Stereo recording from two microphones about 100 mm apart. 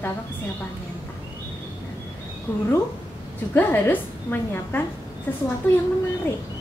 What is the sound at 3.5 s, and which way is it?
A woman's voice, 20° left (ahead or behind).